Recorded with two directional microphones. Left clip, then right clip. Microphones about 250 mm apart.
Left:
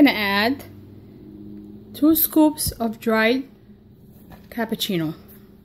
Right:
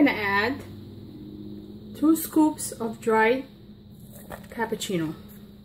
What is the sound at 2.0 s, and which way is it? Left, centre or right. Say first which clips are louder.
Speech: left 4 dB; left.